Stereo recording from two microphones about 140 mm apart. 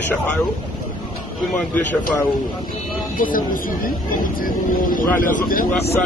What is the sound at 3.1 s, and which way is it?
Speech, 80° left.